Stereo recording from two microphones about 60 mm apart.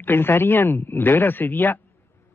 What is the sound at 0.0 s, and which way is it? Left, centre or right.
Speech, left.